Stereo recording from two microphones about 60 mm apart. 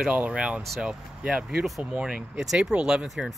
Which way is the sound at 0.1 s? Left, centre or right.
Right.